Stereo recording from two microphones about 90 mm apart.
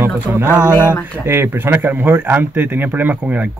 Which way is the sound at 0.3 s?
25° right (ahead or behind).